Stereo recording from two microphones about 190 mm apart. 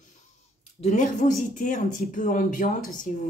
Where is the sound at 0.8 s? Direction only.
35° left (ahead or behind).